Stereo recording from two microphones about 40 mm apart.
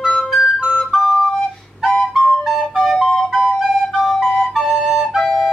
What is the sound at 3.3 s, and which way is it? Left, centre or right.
Flute, centre.